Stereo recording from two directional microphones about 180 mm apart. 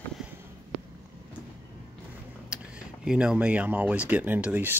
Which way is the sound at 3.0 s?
5° right (ahead or behind).